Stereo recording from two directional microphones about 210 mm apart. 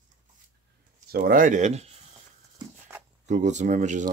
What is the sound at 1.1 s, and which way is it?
Speech, 45° right (ahead or behind).